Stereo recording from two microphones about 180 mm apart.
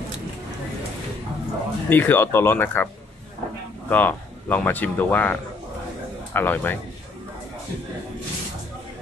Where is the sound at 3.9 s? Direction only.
10° left (ahead or behind).